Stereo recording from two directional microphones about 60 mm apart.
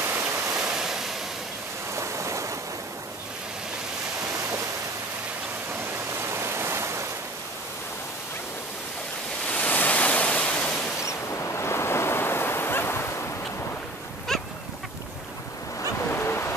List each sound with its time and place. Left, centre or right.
0.1 s waterfall: right
0.5 s waves: centre
2.0 s ocean: right
6.2 s waterfall: right
9.5 s waves: left
11.0 s waves: left
14.3 s dog: centre
16.0 s a sound: left